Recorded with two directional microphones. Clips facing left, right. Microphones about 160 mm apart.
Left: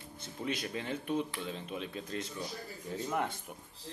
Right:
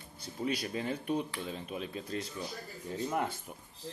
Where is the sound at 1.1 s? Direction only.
10° right (ahead or behind).